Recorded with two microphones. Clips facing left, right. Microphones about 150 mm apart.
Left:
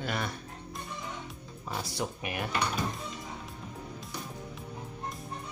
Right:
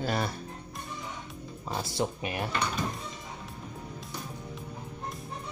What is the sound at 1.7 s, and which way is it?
Speech, 25° right (ahead or behind).